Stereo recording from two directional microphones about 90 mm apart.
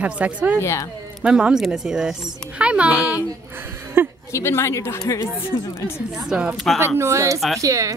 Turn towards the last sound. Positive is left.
turn(degrees=-40)  # may be behind; listen again after turning